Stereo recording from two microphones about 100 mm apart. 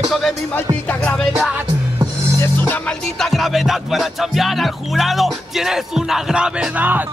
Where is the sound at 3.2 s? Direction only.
Centre (ahead or behind); by 7.0 s 15° right (ahead or behind).